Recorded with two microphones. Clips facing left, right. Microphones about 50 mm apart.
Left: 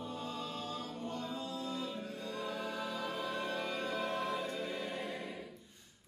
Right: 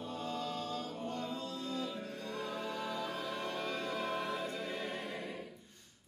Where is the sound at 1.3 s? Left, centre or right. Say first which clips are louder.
Even; centre.